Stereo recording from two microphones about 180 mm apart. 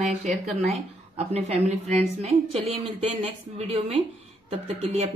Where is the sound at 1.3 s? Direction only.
35° right (ahead or behind).